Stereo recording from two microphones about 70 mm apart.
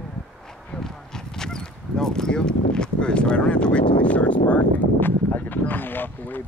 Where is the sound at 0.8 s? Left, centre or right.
Centre.